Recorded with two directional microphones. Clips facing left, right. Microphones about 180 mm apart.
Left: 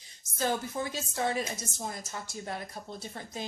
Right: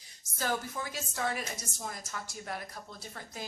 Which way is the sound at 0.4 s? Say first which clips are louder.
Left 3 dB; 25° left (ahead or behind).